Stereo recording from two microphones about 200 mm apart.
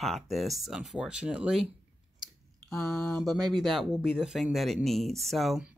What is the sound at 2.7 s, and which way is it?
Speech, centre (ahead or behind).